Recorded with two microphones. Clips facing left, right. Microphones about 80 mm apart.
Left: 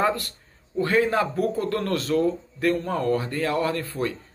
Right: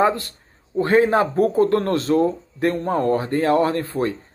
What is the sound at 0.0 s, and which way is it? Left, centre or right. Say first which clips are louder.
Speech: right 5 dB; right.